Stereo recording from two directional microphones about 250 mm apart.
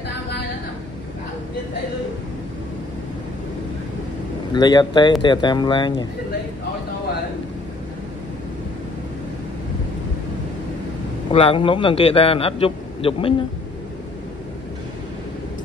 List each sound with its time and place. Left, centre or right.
4.6 s speech: centre
11.3 s a man's voice: left